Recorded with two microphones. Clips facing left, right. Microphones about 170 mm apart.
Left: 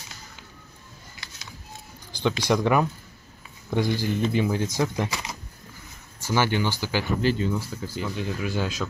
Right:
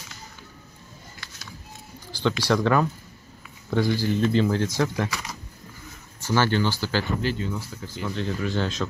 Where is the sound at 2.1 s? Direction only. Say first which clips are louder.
Even; 15° left (ahead or behind).